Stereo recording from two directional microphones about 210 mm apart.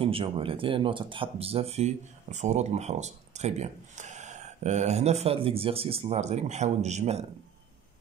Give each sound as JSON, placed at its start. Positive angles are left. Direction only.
{"t": 0.0, "sound": "speech", "side_deg": -25}